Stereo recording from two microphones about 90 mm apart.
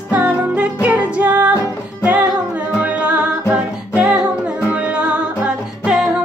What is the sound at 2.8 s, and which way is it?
Music, 15° right (ahead or behind).